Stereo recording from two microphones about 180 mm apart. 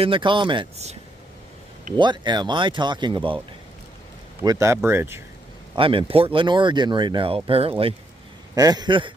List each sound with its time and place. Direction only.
0.0 s speech: 30° right (ahead or behind)
2.0 s speech: 25° right (ahead or behind)
4.4 s speech: 20° right (ahead or behind)
5.8 s speech: 30° right (ahead or behind)
8.5 s speech: 20° right (ahead or behind)